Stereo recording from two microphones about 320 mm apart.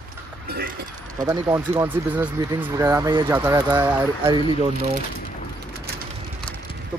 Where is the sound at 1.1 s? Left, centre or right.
Centre.